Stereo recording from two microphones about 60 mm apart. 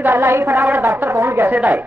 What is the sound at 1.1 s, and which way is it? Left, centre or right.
Speech, right.